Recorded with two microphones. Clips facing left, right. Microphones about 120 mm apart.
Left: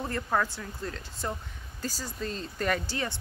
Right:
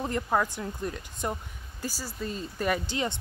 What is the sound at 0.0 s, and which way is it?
Speech, 15° right (ahead or behind).